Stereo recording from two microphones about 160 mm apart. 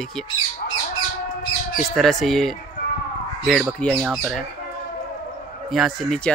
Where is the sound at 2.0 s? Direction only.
Centre (ahead or behind).